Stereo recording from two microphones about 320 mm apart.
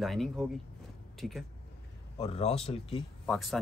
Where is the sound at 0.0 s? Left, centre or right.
Centre.